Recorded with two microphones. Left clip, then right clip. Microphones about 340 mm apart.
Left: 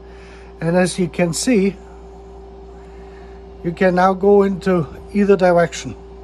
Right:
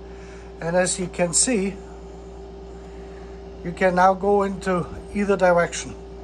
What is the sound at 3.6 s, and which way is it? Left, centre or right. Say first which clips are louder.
Speech: left 3 dB; centre.